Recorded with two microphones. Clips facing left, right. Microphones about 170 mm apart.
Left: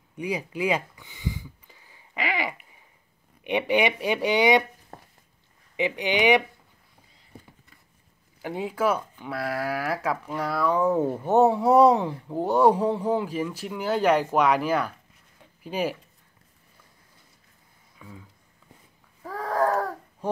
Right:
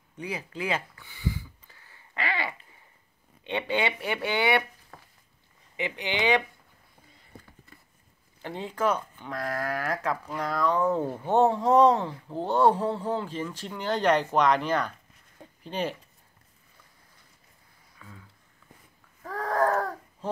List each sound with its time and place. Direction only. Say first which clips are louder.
0.1 s a sound: left 6 dB; 15° left (ahead or behind)
3.4 s speech: left 5 dB; 15° left (ahead or behind)
4.9 s stir: left 5 dB; 45° left (ahead or behind)
5.8 s speech: left 6 dB; 15° left (ahead or behind)
8.4 s speech: left 3 dB; 10° left (ahead or behind)
17.9 s a sound: left 5 dB; 15° left (ahead or behind)